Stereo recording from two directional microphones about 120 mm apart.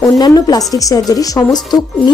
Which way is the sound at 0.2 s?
30° left (ahead or behind).